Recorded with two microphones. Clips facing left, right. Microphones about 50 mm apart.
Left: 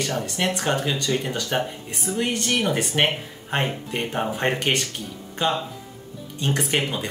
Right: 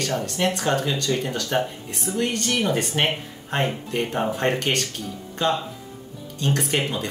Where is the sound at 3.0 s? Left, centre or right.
Centre.